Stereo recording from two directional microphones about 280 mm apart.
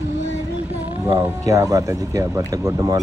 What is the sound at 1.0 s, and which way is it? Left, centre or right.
Speech, centre.